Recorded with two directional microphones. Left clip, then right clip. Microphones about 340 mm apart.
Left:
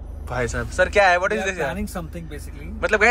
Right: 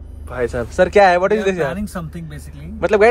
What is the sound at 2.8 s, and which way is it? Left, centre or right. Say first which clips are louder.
Speech: right 5 dB; centre.